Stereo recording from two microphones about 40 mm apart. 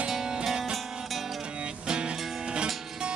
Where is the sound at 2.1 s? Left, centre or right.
Centre.